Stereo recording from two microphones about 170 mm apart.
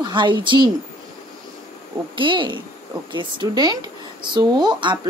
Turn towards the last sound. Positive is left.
turn(degrees=-25)  # may be behind; listen again after turning